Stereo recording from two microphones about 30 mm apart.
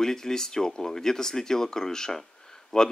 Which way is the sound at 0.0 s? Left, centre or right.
Centre.